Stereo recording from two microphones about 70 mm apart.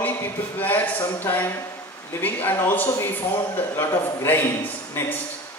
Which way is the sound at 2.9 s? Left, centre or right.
Left.